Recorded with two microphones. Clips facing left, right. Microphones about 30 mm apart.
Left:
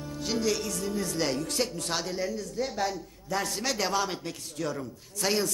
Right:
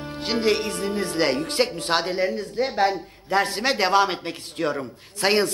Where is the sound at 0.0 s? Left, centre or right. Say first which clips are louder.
Right 6 dB; right.